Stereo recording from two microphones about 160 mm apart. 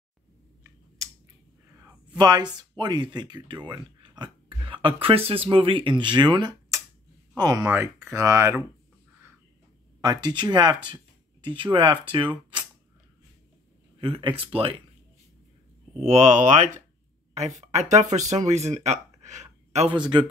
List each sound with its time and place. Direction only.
1.0 s a sound: 20° right (ahead or behind)
2.1 s speech: 25° right (ahead or behind)
7.6 s speech: 15° right (ahead or behind)
10.0 s speech: 30° right (ahead or behind)
13.9 s speech: 30° right (ahead or behind)
16.0 s speech: 45° right (ahead or behind)
20.0 s speech: 30° right (ahead or behind)